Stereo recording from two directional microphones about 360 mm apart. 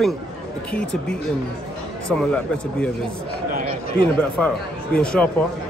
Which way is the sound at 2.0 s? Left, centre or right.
Centre.